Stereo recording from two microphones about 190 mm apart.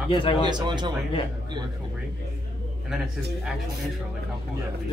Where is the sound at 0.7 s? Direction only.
25° right (ahead or behind).